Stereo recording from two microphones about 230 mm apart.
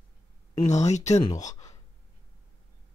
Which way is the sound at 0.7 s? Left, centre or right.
Left.